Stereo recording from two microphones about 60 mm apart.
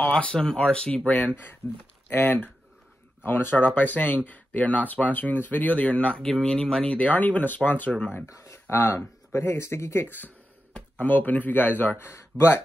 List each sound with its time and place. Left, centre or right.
0.1 s speech: centre
7.0 s speech: left
8.3 s speech: left
12.1 s speech: left